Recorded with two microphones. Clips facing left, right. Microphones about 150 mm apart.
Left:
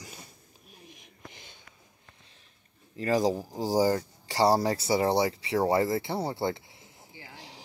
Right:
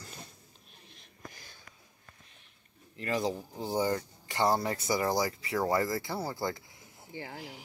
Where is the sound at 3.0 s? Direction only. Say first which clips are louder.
Left 6 dB; 40° left (ahead or behind).